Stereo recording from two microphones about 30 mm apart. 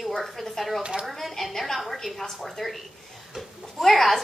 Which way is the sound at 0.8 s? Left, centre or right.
Right.